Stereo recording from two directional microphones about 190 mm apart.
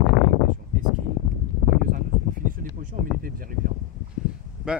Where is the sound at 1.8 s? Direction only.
45° right (ahead or behind).